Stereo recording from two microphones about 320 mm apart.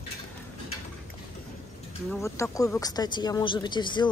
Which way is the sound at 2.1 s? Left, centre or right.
Centre.